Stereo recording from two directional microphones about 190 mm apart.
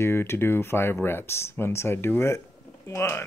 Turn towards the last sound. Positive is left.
turn(degrees=15)  # may be behind; listen again after turning